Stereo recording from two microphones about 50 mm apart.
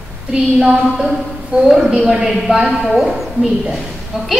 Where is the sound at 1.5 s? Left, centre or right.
Centre.